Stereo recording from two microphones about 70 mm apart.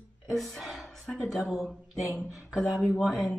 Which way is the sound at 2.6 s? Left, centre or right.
Centre.